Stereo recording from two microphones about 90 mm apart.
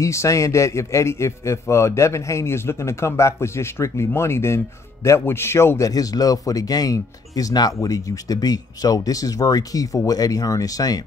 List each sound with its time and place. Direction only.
0.0 s a man's voice: 35° left (ahead or behind)